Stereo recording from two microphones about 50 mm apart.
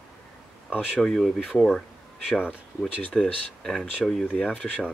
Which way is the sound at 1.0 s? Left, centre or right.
Centre.